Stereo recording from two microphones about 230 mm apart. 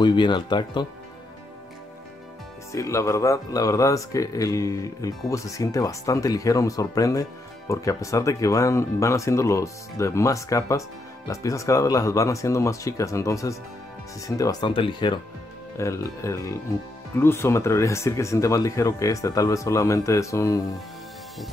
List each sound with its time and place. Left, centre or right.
0.0 s speech: centre
2.7 s speech: centre